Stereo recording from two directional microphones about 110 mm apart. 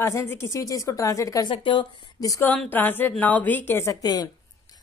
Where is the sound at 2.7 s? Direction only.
15° left (ahead or behind).